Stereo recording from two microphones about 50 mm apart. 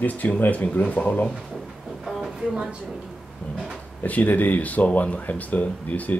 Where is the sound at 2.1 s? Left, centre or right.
Centre.